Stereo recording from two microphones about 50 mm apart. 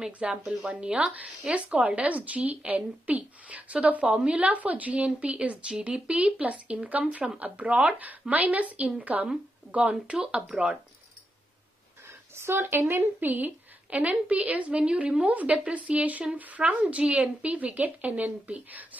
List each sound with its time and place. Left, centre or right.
0.0 s a woman's voice: centre
10.1 s a woman's voice: centre
12.1 s a woman's voice: right